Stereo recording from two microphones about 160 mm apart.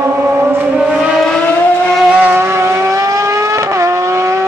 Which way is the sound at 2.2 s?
10° right (ahead or behind).